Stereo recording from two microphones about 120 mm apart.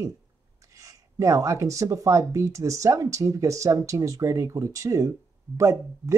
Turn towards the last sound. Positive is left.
turn(degrees=-25)  # may be behind; listen again after turning